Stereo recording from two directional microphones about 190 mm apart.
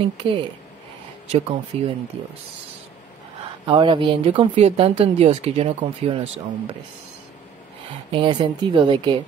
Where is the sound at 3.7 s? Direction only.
25° right (ahead or behind).